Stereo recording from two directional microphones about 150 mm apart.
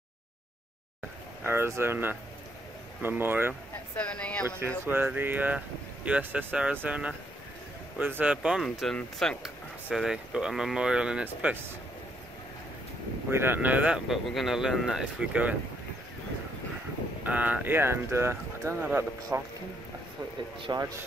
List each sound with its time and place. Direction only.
1.4 s speech: 15° right (ahead or behind)
3.9 s speech: 10° left (ahead or behind)
4.5 s speech: 15° right (ahead or behind)
13.3 s speech: 15° right (ahead or behind)
17.2 s speech: 10° right (ahead or behind)
20.6 s speech: 30° right (ahead or behind)